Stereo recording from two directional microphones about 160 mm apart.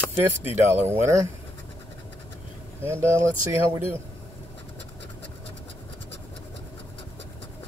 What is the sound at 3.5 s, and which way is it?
Speech, 15° right (ahead or behind).